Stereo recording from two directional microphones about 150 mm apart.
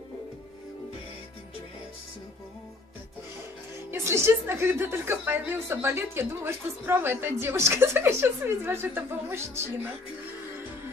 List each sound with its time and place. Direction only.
3.9 s a woman's voice: 20° right (ahead or behind)